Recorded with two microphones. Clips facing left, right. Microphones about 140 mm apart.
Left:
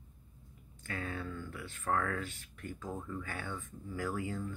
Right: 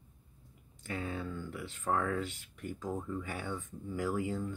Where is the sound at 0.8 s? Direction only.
20° right (ahead or behind).